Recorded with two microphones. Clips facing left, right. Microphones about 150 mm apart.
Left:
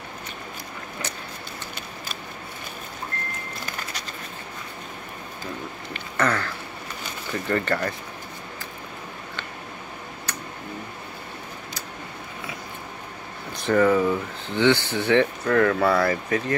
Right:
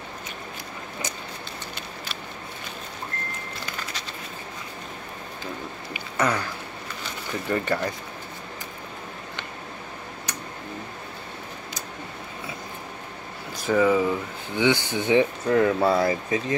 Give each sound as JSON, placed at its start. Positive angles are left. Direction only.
{"t": 5.9, "sound": "a sound", "side_deg": -10}
{"t": 7.4, "sound": "speech", "side_deg": -15}
{"t": 13.6, "sound": "speech", "side_deg": -5}